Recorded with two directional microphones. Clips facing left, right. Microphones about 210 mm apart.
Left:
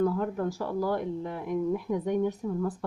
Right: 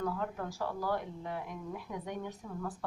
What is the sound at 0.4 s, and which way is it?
Speech, 45° left (ahead or behind).